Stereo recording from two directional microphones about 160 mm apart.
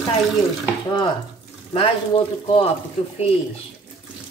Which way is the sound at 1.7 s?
35° left (ahead or behind).